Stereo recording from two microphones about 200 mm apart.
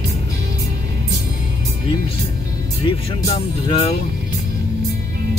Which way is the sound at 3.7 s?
30° left (ahead or behind).